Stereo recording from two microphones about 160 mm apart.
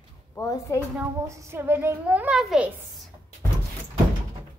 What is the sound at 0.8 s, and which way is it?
A woman's voice, 15° right (ahead or behind).